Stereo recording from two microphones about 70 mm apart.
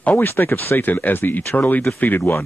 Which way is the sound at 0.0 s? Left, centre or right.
Left.